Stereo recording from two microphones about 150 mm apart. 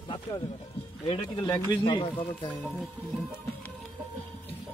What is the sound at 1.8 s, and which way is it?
Speech, 30° left (ahead or behind).